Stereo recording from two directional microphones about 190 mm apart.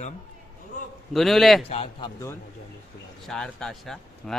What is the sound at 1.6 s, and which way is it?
Speech, 30° left (ahead or behind).